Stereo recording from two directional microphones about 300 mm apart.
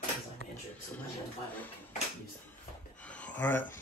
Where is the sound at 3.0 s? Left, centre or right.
Centre.